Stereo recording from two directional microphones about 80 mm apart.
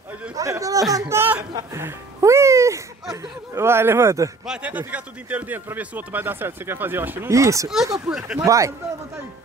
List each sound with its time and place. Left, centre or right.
0.4 s speech: right
0.9 s speech: right
1.7 s music: right
3.5 s speech: right
4.5 s speech: centre
7.2 s speech: right
8.1 s speech: centre
8.5 s speech: right